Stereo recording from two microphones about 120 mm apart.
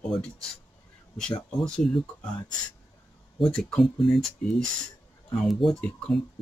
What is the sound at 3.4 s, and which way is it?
Speech, 5° left (ahead or behind).